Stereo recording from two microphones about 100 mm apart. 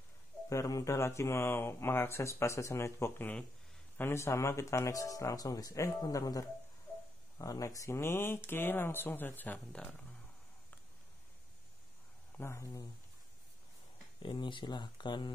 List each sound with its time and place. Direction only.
0.5 s speech: 35° left (ahead or behind); by 9.9 s 10° left (ahead or behind)
12.4 s speech: 30° left (ahead or behind)
14.2 s speech: 50° left (ahead or behind)